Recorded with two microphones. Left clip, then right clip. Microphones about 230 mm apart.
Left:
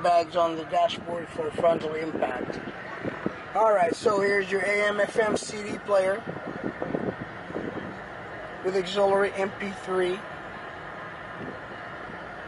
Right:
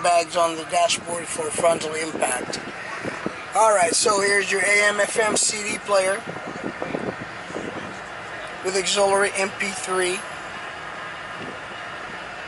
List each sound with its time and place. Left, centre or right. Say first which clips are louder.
0.0 s speech: right 3 dB; centre
3.1 s vehicle: right 2 dB; centre
3.9 s speech: right 4 dB; centre
8.6 s speech: right 4 dB; centre